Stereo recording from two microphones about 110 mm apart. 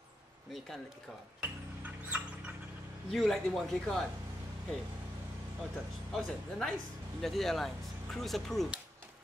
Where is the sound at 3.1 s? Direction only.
5° left (ahead or behind).